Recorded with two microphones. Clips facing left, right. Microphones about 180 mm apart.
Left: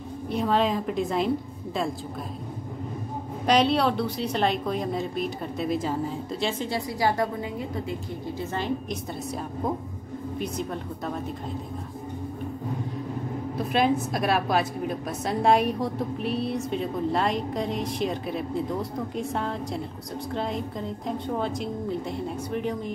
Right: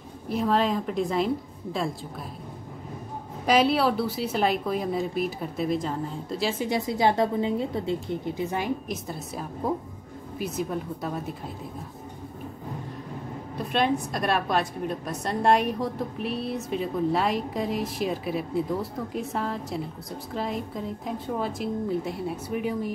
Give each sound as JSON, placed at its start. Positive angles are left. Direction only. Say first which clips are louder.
{"t": 0.3, "sound": "a woman's voice", "louder": "even", "side_deg": 0}
{"t": 3.4, "sound": "a woman's voice", "louder": "even", "side_deg": -5}
{"t": 6.7, "sound": "a woman's voice", "louder": "right 5 dB", "side_deg": -20}
{"t": 8.4, "sound": "a woman's voice", "louder": "left 3 dB", "side_deg": -15}
{"t": 10.4, "sound": "a woman's voice", "louder": "right 4 dB", "side_deg": -5}
{"t": 13.6, "sound": "a woman's voice", "louder": "left 1 dB", "side_deg": 0}